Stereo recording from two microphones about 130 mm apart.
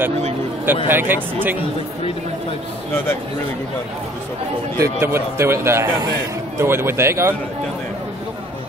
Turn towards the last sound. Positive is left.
turn(degrees=-20)  # may be behind; listen again after turning